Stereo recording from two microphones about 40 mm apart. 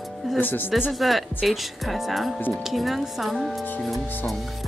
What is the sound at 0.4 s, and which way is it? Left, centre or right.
Speech, left.